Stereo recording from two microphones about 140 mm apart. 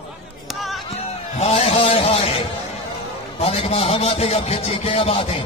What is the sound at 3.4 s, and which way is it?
A man's voice, 50° left (ahead or behind).